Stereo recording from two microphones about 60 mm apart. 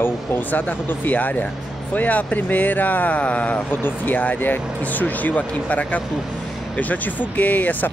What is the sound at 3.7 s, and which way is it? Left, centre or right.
Speech, left.